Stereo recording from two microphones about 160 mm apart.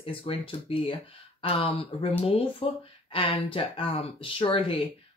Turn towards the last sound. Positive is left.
turn(degrees=35)  # may be behind; listen again after turning